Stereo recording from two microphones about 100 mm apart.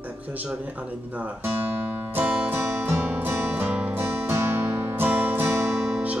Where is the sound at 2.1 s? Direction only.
20° right (ahead or behind).